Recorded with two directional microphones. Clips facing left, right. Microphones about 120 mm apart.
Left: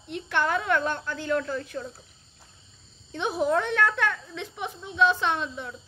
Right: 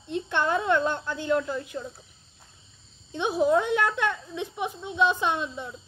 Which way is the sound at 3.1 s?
15° right (ahead or behind).